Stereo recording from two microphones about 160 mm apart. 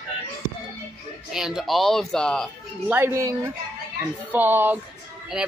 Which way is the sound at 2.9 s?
15° right (ahead or behind).